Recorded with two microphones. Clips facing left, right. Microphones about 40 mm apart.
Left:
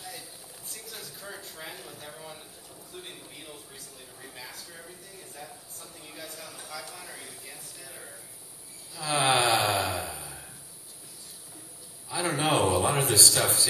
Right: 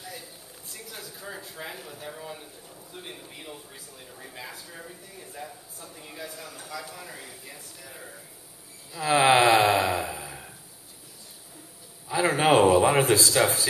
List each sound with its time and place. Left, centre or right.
0.0 s speech: centre
8.9 s gasp: right
12.1 s speech: right